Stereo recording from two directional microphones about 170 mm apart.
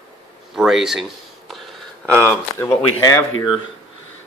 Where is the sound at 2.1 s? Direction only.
15° left (ahead or behind).